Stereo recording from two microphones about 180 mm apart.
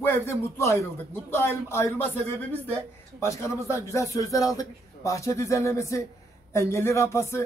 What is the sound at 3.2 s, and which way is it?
Speech, 15° left (ahead or behind).